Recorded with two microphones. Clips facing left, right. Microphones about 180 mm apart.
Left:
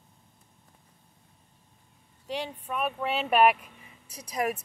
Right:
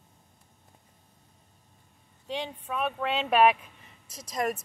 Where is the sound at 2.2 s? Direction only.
5° left (ahead or behind).